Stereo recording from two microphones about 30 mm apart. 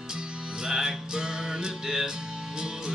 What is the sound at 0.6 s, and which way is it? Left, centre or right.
Music, right.